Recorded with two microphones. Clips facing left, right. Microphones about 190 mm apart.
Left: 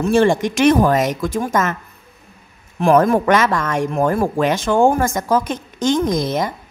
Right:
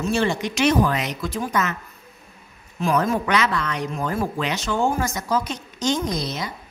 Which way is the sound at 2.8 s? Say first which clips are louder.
Left 8 dB; 55° left (ahead or behind).